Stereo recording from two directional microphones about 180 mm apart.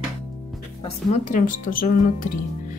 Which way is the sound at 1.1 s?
45° left (ahead or behind).